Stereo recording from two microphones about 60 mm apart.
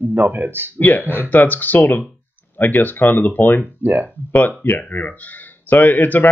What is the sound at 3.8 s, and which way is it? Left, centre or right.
Speech, right.